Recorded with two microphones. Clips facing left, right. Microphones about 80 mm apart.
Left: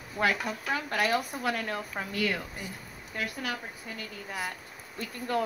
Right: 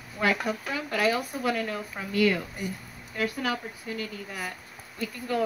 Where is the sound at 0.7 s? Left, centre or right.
Left.